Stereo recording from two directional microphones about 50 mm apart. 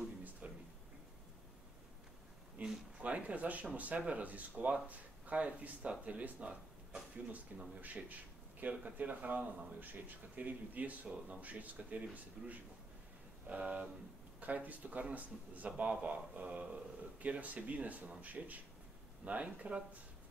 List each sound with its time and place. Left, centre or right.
0.4 s a sound: right
2.6 s a sound: right
3.0 s speech: right
7.8 s speech: right
12.4 s speech: centre
13.5 s speech: right